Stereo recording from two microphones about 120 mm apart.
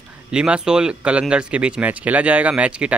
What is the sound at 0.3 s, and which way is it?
Speech, 5° right (ahead or behind).